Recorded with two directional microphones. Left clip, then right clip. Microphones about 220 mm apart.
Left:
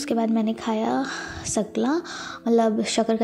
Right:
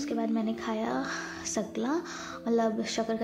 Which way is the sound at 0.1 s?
30° left (ahead or behind).